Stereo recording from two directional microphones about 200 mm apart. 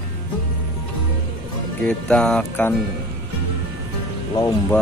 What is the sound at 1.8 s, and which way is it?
Speech, 5° left (ahead or behind).